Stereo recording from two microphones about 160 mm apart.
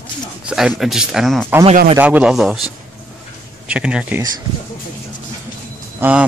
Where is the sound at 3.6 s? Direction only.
5° right (ahead or behind).